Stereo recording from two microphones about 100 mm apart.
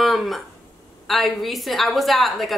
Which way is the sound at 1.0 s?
Centre (ahead or behind).